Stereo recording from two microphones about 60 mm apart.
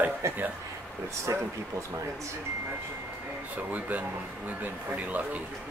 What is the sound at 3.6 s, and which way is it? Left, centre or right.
Speech, right.